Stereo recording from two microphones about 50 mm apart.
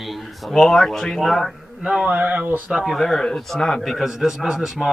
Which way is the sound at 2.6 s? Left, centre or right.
Centre.